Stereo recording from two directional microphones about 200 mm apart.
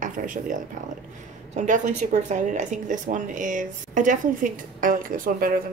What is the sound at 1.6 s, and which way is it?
Speech, 35° right (ahead or behind).